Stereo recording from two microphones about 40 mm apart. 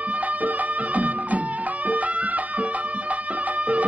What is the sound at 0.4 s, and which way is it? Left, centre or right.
Music, right.